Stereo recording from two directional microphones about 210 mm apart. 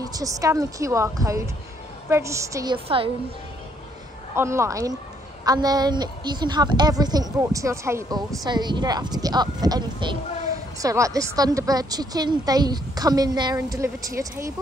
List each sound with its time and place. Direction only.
0.0 s a woman's voice: 15° right (ahead or behind)
4.4 s a woman's voice: 15° right (ahead or behind)